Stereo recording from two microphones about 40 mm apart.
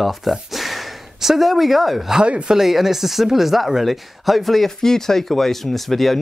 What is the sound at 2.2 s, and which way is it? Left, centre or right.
Speech, right.